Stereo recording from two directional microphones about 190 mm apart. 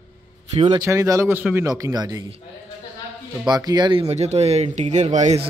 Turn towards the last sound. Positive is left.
turn(degrees=-35)  # may be behind; listen again after turning